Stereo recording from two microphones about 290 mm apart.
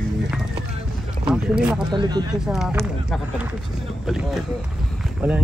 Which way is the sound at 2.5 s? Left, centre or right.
Centre.